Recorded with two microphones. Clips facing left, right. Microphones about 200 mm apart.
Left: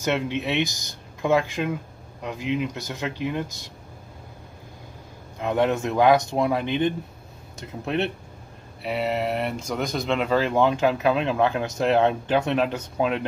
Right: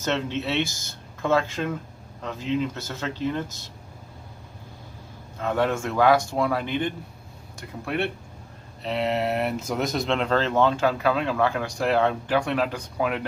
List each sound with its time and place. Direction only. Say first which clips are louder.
0.0 s speech: left 2 dB; 15° left (ahead or behind)
5.4 s speech: left 2 dB; 20° left (ahead or behind)
8.8 s speech: even; 5° left (ahead or behind); by 13.2 s 25° left (ahead or behind)